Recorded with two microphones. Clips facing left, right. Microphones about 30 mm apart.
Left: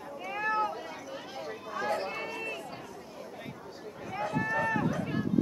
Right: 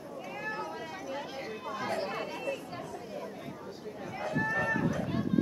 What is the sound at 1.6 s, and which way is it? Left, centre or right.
Chatter, centre.